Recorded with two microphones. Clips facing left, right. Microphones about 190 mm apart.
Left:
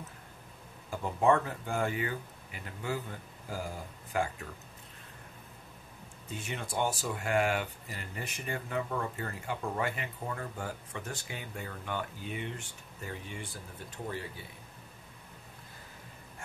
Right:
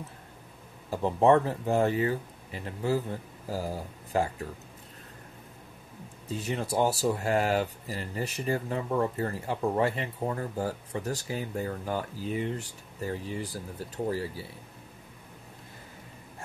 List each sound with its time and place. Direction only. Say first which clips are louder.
0.8 s speech: right 5 dB; 35° right (ahead or behind)
6.3 s speech: right 7 dB; 35° right (ahead or behind)